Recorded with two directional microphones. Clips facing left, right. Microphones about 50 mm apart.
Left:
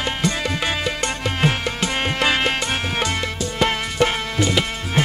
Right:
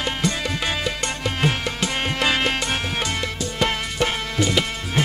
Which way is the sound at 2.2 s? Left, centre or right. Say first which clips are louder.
Left 1 dB; left.